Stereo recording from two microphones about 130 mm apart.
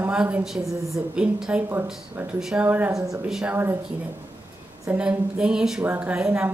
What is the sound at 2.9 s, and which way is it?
Speech, 25° right (ahead or behind).